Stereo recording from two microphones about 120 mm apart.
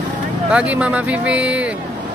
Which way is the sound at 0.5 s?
10° right (ahead or behind).